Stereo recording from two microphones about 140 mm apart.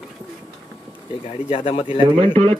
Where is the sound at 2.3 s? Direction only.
45° right (ahead or behind).